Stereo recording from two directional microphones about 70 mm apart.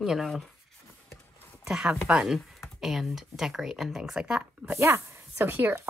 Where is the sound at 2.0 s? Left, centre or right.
Centre.